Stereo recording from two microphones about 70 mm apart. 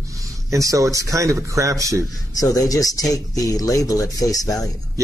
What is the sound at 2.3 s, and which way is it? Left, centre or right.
Speech, left.